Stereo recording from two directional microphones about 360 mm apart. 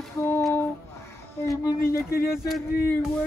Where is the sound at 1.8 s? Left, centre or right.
Left.